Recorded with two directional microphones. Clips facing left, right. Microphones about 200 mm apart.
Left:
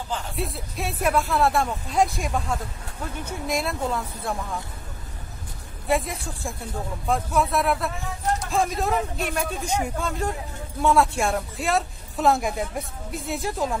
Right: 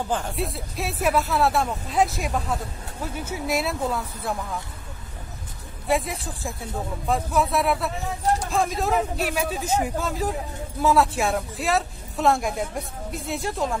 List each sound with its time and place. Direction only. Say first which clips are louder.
0.4 s speech: right 1 dB; centre (ahead or behind)
5.9 s speech: even; centre (ahead or behind)